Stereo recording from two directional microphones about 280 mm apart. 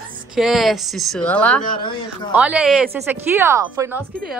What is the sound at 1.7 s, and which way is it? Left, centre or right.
Speech, centre.